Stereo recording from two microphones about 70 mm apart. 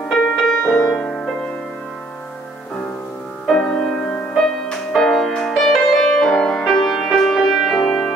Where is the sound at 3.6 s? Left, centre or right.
Centre.